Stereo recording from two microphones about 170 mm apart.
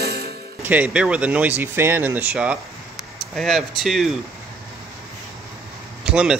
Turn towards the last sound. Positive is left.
turn(degrees=-5)  # may be behind; listen again after turning